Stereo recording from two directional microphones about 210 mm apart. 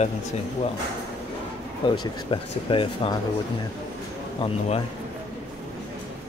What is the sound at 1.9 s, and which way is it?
Speech, 25° left (ahead or behind).